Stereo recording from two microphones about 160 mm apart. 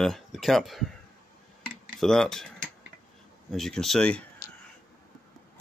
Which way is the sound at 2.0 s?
5° left (ahead or behind).